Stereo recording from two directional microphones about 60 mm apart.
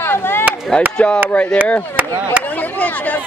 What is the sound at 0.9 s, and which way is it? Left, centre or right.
A woman's voice, centre.